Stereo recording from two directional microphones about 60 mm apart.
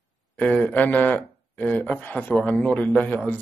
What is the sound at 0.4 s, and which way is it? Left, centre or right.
A man's voice, left.